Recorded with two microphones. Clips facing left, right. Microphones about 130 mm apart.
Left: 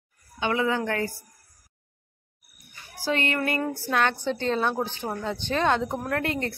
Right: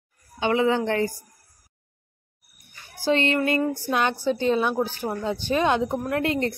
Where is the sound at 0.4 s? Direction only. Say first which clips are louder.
Right 4 dB; 30° right (ahead or behind).